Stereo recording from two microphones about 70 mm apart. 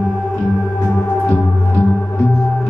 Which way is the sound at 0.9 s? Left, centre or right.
Left.